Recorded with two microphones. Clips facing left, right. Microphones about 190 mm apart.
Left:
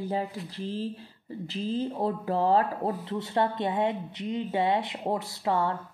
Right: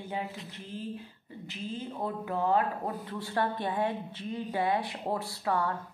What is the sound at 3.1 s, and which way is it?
A woman's voice, 25° left (ahead or behind).